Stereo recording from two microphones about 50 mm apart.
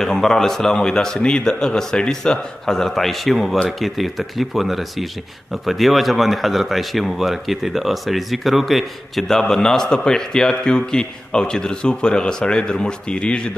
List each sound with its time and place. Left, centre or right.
0.0 s speech: centre